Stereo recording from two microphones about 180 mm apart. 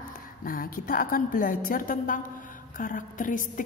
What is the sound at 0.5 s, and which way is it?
A woman's voice, 50° left (ahead or behind).